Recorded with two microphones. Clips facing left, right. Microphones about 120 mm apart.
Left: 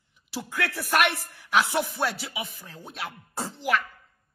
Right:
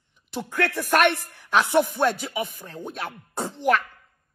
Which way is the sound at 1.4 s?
45° right (ahead or behind).